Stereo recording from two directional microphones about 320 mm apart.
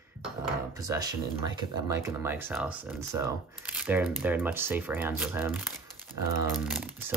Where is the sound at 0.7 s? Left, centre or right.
Centre.